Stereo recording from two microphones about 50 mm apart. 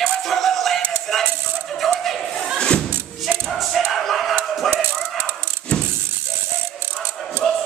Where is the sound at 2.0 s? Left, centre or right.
Centre.